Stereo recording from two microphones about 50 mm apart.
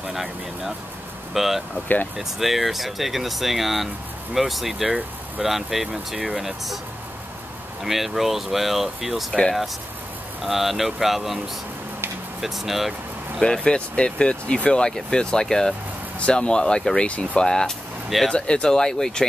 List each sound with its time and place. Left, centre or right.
0.0 s speech: centre
7.8 s speech: centre
9.3 s speech: centre
10.4 s speech: centre
13.4 s speech: centre